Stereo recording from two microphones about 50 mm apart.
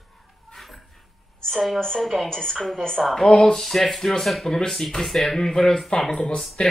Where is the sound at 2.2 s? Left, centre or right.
Centre.